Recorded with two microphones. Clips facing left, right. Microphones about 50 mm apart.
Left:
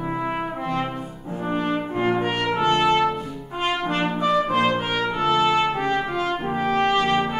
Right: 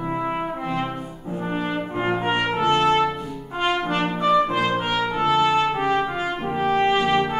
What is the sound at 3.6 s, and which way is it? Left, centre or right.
Brass instrument, centre.